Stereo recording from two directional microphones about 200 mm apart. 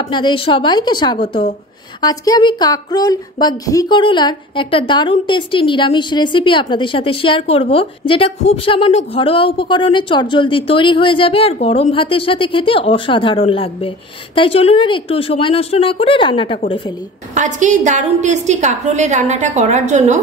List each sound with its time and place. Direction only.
0.1 s a woman's voice: 25° left (ahead or behind)
17.3 s a woman's voice: 40° right (ahead or behind)